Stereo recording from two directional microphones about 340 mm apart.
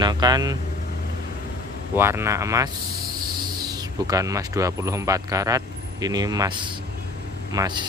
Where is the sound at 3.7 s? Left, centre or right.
Centre.